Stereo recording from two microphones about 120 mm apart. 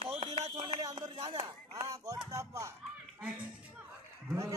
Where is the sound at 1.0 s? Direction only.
40° right (ahead or behind).